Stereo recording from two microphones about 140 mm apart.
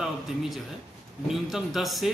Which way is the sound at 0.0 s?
Centre (ahead or behind).